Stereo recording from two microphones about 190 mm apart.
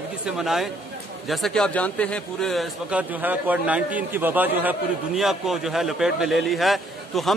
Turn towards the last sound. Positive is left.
turn(degrees=0)  # may be behind; listen again after turning